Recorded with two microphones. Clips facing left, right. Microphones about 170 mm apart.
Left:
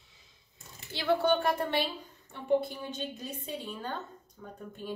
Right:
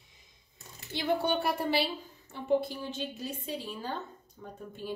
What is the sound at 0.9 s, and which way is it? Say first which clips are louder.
A woman's voice: left 2 dB; 10° right (ahead or behind).